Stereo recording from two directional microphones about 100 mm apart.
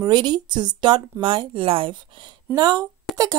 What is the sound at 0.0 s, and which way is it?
A woman's voice, 45° right (ahead or behind).